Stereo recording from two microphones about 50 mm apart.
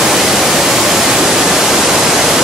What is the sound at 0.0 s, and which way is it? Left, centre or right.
Pink noise, centre.